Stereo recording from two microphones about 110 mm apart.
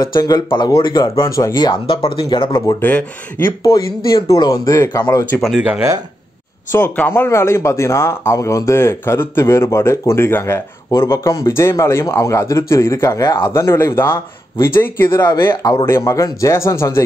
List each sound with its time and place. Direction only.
0.1 s speech: 40° left (ahead or behind)
1.2 s speech: 30° left (ahead or behind)
2.0 s speech: 55° left (ahead or behind)
2.8 s speech: 15° left (ahead or behind)
3.6 s speech: 30° left (ahead or behind)
5.3 s speech: 20° left (ahead or behind)
6.7 s speech: 20° left (ahead or behind)
13.5 s speech: 25° left (ahead or behind)
15.1 s speech: 35° left (ahead or behind)
15.6 s speech: 25° left (ahead or behind)